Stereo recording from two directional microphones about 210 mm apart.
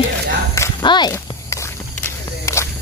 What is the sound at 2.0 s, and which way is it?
Walk, 15° left (ahead or behind).